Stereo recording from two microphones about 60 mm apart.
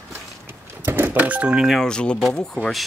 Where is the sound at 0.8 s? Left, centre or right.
Right.